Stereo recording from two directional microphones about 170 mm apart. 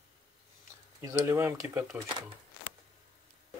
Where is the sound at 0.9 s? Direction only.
15° right (ahead or behind).